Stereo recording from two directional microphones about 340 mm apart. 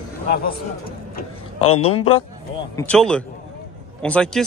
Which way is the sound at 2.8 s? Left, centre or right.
Centre.